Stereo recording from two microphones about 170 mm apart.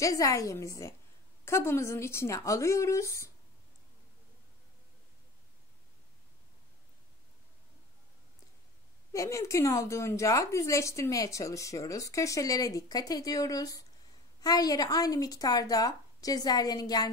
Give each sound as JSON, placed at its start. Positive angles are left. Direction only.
{"t": 0.0, "sound": "a woman's voice", "side_deg": 20}
{"t": 9.1, "sound": "a woman's voice", "side_deg": 20}